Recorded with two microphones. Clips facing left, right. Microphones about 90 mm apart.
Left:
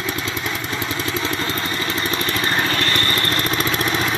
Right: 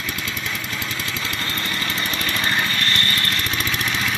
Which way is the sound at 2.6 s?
30° left (ahead or behind).